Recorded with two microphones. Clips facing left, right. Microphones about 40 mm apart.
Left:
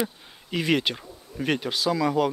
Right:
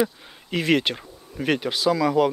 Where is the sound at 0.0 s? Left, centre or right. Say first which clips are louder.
Right 5 dB; centre.